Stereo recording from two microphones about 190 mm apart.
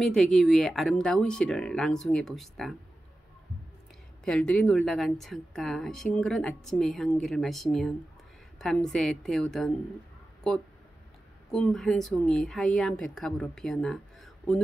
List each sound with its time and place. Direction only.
0.0 s a woman's voice: centre (ahead or behind)
4.2 s a woman's voice: 5° left (ahead or behind)
11.5 s a woman's voice: 5° left (ahead or behind)